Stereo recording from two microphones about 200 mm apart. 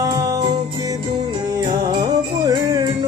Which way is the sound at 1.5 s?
20° right (ahead or behind).